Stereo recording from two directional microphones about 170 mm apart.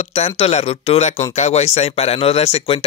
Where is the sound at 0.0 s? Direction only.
40° left (ahead or behind).